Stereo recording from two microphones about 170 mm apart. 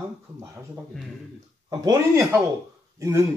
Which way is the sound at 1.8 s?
20° right (ahead or behind).